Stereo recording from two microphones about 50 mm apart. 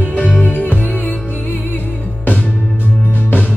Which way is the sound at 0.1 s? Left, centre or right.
Left.